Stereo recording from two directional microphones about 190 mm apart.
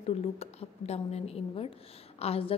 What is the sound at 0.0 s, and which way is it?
A woman's voice, 35° left (ahead or behind).